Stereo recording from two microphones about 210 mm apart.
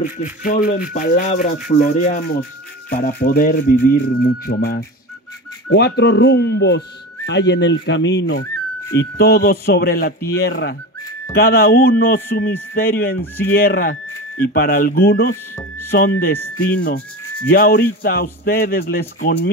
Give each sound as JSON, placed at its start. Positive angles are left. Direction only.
{"t": 0.0, "sound": "a man's voice", "side_deg": 40}
{"t": 5.7, "sound": "speech", "side_deg": 50}
{"t": 8.9, "sound": "a man's voice", "side_deg": 50}